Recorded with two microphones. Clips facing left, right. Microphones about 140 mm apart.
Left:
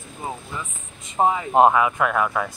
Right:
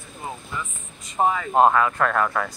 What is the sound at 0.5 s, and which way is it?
Speech, 25° left (ahead or behind).